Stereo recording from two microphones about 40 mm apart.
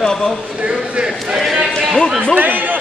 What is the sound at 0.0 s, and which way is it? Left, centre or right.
Speech, centre.